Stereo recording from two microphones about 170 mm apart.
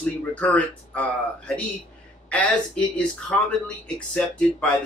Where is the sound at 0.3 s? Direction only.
10° left (ahead or behind).